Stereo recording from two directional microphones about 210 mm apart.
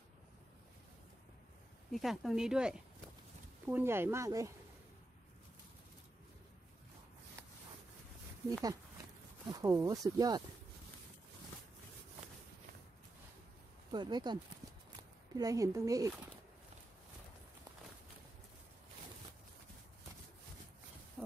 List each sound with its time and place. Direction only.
1.9 s speech: centre (ahead or behind)
8.5 s speech: 15° right (ahead or behind)
13.9 s speech: 20° right (ahead or behind)